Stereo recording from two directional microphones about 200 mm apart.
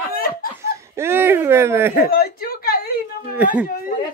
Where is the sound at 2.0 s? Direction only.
45° left (ahead or behind).